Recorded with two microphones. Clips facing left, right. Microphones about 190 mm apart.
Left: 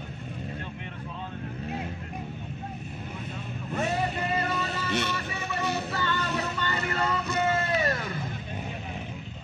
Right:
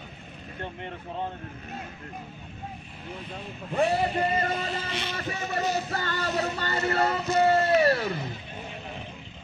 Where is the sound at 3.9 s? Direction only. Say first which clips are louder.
Right 3 dB; 45° right (ahead or behind).